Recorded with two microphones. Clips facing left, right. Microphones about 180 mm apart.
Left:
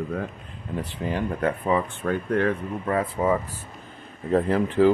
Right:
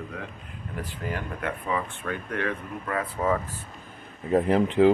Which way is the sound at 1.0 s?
25° left (ahead or behind).